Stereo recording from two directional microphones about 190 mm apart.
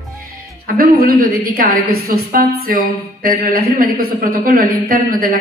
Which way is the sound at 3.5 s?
50° right (ahead or behind).